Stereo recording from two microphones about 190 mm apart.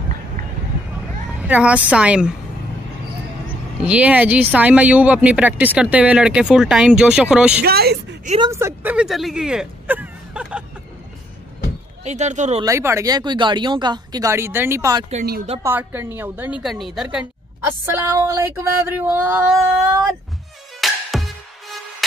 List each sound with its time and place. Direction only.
1.5 s speech: 5° right (ahead or behind)
3.8 s speech: 5° right (ahead or behind)
7.6 s speech: 55° right (ahead or behind)
8.4 s speech: 15° right (ahead or behind)
12.0 s speech: 35° right (ahead or behind)
12.6 s speech: 15° right (ahead or behind)
20.8 s music: centre (ahead or behind)